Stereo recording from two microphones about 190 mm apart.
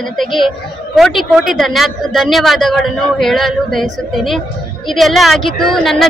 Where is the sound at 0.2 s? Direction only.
Centre (ahead or behind).